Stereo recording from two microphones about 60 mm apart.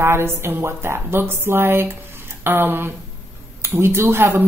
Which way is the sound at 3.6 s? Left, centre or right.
Right.